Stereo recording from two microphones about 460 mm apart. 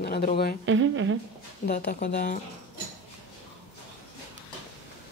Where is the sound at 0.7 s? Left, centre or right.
Right.